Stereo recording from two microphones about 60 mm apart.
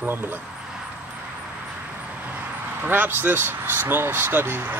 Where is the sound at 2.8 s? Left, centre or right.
Right.